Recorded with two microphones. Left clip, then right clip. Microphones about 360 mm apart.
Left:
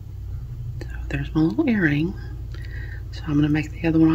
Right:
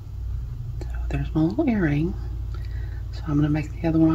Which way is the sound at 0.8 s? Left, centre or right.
Centre.